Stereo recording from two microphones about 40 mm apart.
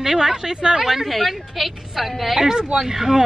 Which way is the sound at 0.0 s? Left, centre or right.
Centre.